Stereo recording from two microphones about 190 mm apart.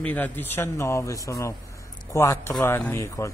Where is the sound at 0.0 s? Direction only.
10° left (ahead or behind).